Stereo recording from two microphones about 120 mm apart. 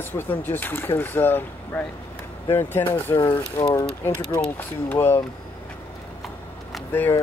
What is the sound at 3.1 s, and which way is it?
Speech, 35° left (ahead or behind).